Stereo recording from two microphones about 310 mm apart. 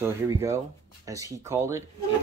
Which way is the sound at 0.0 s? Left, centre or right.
Centre.